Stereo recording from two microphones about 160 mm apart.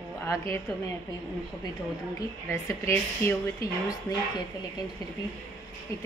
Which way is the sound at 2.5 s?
15° left (ahead or behind).